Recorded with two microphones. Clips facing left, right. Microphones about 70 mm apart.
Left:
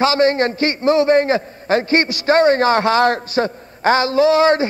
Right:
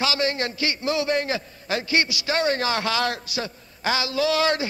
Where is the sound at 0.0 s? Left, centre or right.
Left.